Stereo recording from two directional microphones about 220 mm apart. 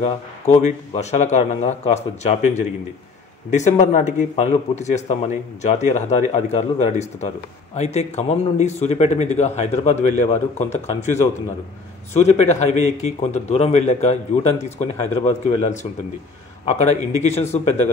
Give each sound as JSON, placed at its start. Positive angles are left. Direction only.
{"t": 0.0, "sound": "speech", "side_deg": 30}
{"t": 17.2, "sound": "speech", "side_deg": 30}